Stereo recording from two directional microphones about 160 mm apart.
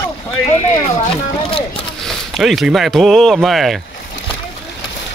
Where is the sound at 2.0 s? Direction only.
Centre (ahead or behind).